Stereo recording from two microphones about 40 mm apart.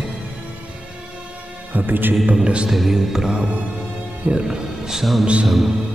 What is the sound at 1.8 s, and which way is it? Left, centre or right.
Speech, right.